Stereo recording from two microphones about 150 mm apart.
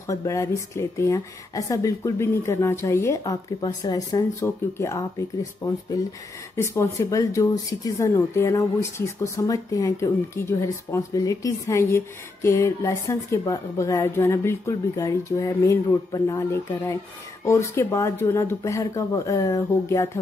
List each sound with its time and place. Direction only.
0.1 s speech: 20° left (ahead or behind)
6.5 s speech: 15° left (ahead or behind)